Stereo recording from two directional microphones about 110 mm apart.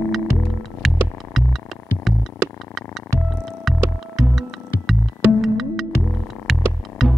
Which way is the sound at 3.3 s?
Centre (ahead or behind).